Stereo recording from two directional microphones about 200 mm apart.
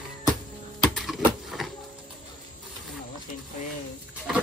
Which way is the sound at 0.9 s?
Centre (ahead or behind).